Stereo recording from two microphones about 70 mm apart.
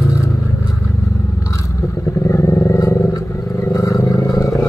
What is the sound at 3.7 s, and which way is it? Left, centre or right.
Vehicle, left.